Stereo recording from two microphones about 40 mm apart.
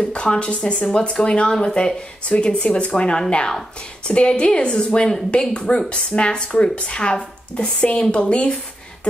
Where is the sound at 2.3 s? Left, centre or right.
Left.